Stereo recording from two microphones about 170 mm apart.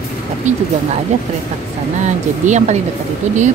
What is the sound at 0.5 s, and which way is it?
Speech, 45° right (ahead or behind).